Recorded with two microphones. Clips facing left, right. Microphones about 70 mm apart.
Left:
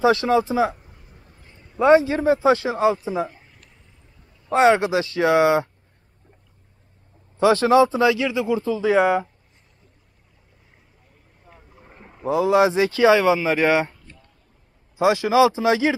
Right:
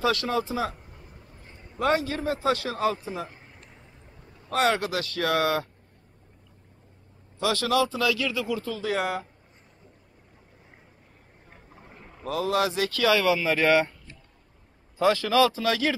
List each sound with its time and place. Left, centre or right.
0.0 s a man's voice: left
1.8 s a man's voice: left
3.3 s a sound: right
4.5 s a man's voice: left
7.3 s a man's voice: left
11.8 s speech: centre
15.0 s speech: centre